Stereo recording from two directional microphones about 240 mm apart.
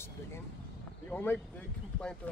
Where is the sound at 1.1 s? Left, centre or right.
Centre.